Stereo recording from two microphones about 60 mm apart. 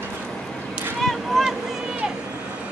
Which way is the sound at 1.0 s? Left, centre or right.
Centre.